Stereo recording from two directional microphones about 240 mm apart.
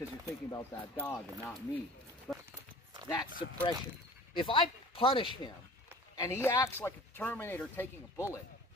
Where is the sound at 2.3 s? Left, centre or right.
Centre.